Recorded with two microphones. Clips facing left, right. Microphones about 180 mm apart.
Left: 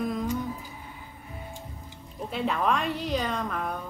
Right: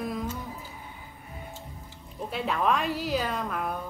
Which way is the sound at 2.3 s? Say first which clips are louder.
Even; centre (ahead or behind).